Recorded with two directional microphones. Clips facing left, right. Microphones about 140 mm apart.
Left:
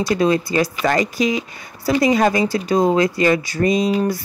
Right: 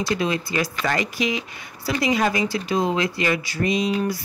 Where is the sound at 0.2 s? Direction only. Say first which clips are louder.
Left 7 dB; 40° left (ahead or behind).